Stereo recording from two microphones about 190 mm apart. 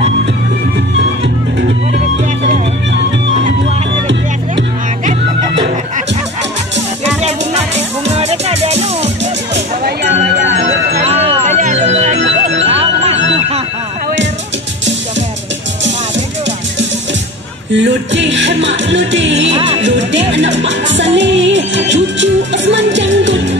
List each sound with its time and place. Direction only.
7.2 s music: 35° right (ahead or behind)
10.5 s music: 35° right (ahead or behind)
11.4 s music: 40° right (ahead or behind)
17.7 s music: 70° right (ahead or behind)